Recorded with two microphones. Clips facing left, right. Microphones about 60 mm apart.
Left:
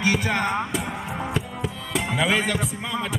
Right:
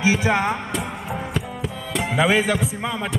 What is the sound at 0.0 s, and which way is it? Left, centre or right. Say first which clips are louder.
Music: right 3 dB; centre.